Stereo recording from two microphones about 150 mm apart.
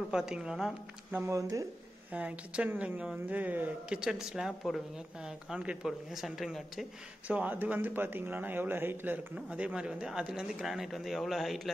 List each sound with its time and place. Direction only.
0.1 s speech: 5° right (ahead or behind)
1.2 s speech: 20° right (ahead or behind)
2.1 s speech: 10° right (ahead or behind)